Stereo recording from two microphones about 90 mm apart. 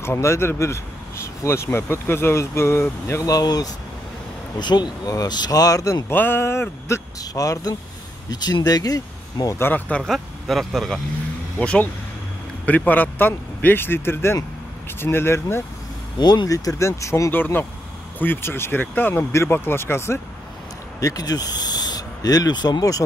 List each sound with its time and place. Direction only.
0.0 s speech: 30° left (ahead or behind)
3.3 s speech: 45° left (ahead or behind)
6.0 s speech: 25° left (ahead or behind)
7.2 s speech: 40° left (ahead or behind)
8.3 s speech: 50° left (ahead or behind)
9.6 s speech: 20° left (ahead or behind)
10.0 s speech: 5° left (ahead or behind)
11.5 s speech: 15° left (ahead or behind)
16.2 s speech: 50° left (ahead or behind); by 17.3 s 35° left (ahead or behind)
17.3 s speech: 20° left (ahead or behind)
21.0 s owl: 45° left (ahead or behind)